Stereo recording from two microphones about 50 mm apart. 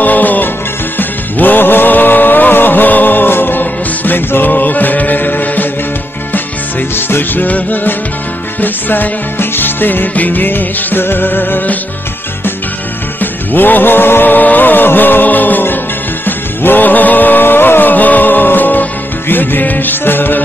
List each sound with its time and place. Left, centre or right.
0.0 s music: left
7.0 s music: left
13.2 s music: left